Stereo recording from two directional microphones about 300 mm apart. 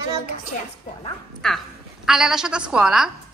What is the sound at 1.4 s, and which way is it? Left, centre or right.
A woman's voice, centre.